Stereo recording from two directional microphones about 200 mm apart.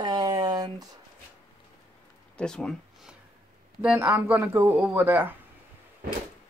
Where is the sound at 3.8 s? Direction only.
10° right (ahead or behind).